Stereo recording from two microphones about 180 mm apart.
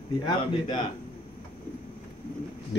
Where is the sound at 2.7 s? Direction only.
75° left (ahead or behind).